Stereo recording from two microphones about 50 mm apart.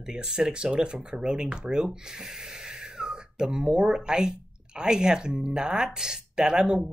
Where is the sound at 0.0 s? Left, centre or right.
Centre.